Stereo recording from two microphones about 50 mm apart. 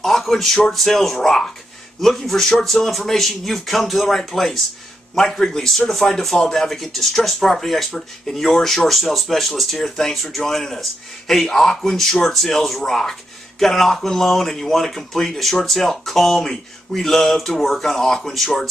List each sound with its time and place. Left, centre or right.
0.0 s speech: centre
6.7 s speech: centre